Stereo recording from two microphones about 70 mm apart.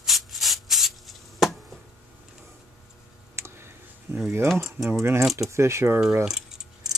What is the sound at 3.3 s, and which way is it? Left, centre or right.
Clicking, right.